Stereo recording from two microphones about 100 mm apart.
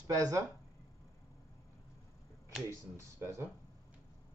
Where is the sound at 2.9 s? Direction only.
25° right (ahead or behind).